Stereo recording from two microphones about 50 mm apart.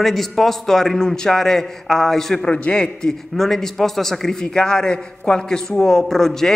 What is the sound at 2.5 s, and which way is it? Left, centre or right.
Speech, left.